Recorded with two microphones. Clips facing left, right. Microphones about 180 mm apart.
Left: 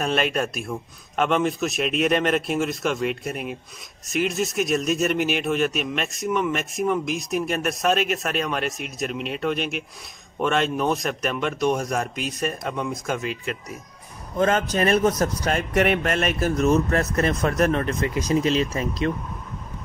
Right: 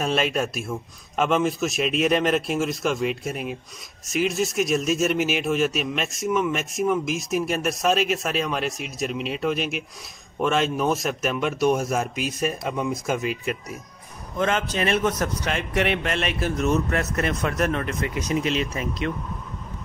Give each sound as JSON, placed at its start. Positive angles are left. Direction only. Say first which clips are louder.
{"t": 0.0, "sound": "speech", "louder": "even", "side_deg": 0}
{"t": 14.4, "sound": "speech", "louder": "left 3 dB", "side_deg": 40}